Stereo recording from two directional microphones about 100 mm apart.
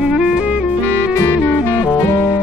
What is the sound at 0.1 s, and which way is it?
Music, 5° right (ahead or behind).